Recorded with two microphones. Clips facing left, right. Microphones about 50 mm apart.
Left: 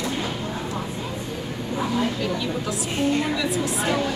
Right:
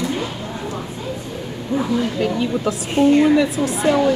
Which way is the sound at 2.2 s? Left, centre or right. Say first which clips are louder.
Right 6 dB; right.